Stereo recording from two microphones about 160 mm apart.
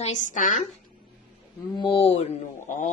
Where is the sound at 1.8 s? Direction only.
35° left (ahead or behind).